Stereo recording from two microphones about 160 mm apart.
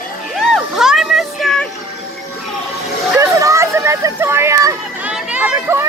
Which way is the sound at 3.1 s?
20° right (ahead or behind).